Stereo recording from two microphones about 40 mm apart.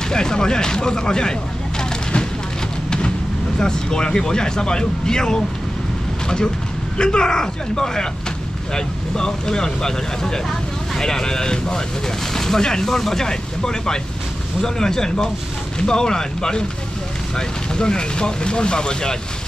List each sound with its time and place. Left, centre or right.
0.1 s speech: centre
3.5 s speech: centre